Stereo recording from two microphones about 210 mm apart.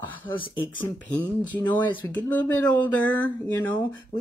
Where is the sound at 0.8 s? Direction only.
10° left (ahead or behind).